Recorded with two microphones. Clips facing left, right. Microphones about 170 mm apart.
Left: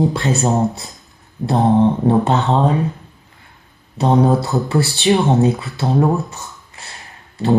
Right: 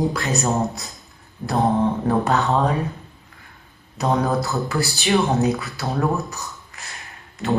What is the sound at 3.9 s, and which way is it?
Speech, 30° left (ahead or behind).